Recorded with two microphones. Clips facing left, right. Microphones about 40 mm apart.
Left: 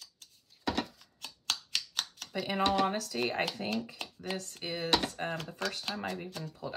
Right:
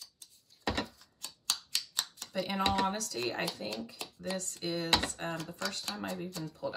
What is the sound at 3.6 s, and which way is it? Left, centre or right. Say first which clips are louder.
Speech: left 4 dB; left.